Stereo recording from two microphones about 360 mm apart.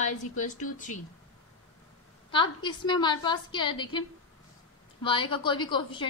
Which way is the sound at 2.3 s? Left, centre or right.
Centre.